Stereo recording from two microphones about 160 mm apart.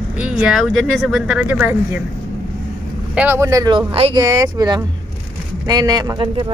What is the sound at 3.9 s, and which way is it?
Speech, 35° right (ahead or behind).